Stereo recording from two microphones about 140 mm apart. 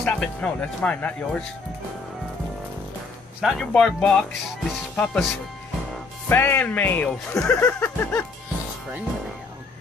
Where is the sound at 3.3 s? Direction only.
Centre (ahead or behind).